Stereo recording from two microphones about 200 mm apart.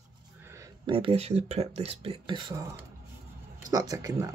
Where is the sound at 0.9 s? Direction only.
25° right (ahead or behind).